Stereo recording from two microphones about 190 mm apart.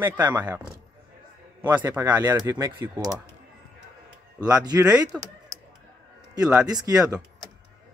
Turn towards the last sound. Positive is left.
turn(degrees=-20)  # may be behind; listen again after turning